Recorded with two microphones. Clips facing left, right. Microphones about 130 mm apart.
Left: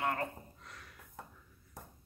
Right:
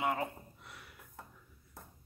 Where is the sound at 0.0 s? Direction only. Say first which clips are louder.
Right 1 dB; 10° right (ahead or behind).